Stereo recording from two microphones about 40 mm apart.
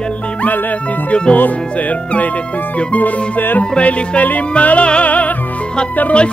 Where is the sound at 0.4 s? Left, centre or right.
Left.